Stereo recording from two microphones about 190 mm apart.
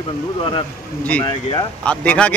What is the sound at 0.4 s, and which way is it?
Speech, 25° left (ahead or behind).